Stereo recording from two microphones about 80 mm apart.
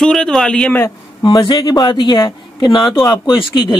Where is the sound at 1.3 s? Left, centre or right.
Left.